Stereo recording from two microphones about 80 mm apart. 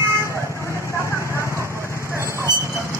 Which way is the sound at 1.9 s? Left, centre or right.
Left.